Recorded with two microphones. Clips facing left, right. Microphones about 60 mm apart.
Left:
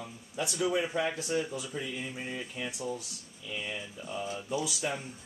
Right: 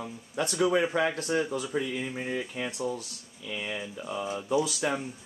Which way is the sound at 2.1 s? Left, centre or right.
Right.